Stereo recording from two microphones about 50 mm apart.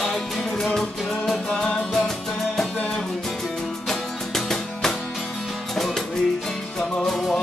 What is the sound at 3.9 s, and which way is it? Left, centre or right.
Music, centre.